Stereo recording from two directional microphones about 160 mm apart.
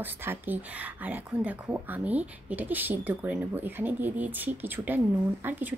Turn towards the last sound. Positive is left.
turn(degrees=-15)  # may be behind; listen again after turning